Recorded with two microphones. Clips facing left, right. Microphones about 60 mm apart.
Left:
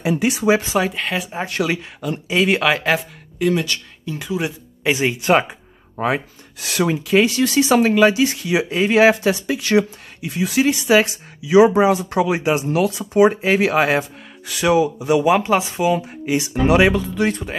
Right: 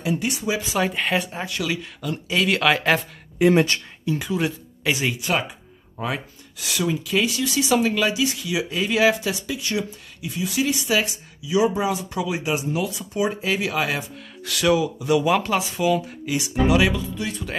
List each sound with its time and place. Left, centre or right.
0.0 s speech: left
0.7 s speech: centre
1.6 s speech: left
2.6 s speech: centre
3.3 s speech: right
4.0 s speech: centre
4.8 s speech: left
5.2 s speech: left
9.6 s speech: left
13.3 s speech: left
14.4 s speech: left
16.6 s speech: left
16.9 s speech: left